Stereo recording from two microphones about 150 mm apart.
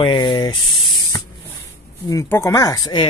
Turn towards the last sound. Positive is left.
turn(degrees=25)  # may be behind; listen again after turning